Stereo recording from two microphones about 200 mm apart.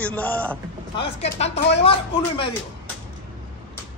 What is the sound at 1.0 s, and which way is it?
Speech, 30° left (ahead or behind).